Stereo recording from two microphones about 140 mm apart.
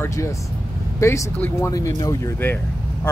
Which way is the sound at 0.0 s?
20° left (ahead or behind).